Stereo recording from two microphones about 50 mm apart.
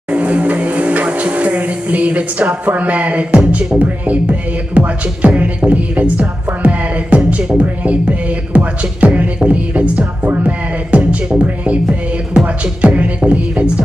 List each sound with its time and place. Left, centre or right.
0.1 s speech: right
11.3 s music: right